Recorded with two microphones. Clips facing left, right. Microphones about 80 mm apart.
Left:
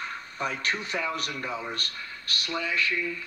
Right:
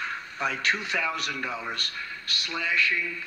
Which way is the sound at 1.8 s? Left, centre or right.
Left.